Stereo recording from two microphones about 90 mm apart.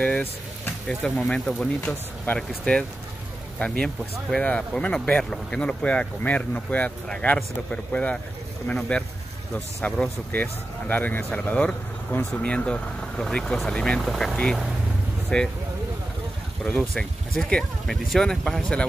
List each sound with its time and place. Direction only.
0.8 s speech: 10° left (ahead or behind)
16.9 s speech: 5° left (ahead or behind)